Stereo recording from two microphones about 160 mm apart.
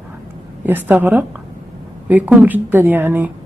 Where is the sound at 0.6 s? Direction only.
10° right (ahead or behind).